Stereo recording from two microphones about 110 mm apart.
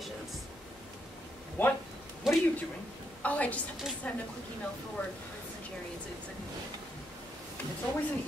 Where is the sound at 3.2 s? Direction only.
15° left (ahead or behind).